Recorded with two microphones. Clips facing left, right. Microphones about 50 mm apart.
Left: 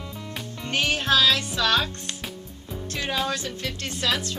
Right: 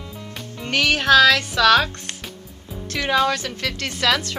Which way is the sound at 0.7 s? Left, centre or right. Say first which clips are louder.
Right 6 dB; right.